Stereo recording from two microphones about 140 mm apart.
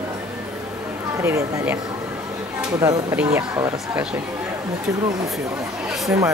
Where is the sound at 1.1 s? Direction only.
20° right (ahead or behind).